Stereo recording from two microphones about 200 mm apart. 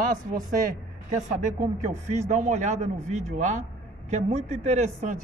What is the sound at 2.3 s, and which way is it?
Speech, 35° right (ahead or behind).